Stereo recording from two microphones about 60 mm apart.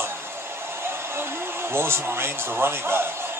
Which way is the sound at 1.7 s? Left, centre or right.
Right.